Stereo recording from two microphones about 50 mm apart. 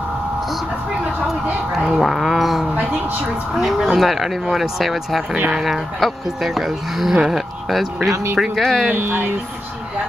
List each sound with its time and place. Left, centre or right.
1.7 s a sound: centre
3.5 s speech: centre
8.1 s speech: right
8.4 s speech: centre
8.9 s speech: right